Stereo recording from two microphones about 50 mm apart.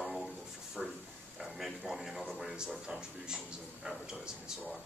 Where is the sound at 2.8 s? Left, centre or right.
Centre.